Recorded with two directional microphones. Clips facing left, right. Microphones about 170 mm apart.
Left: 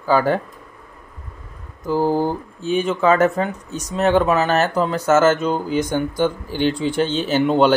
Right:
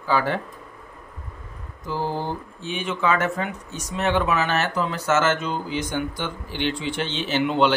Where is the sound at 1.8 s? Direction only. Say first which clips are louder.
Left 8 dB; 45° left (ahead or behind).